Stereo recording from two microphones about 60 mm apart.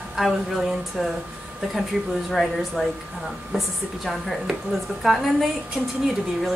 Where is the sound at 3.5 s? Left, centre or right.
Centre.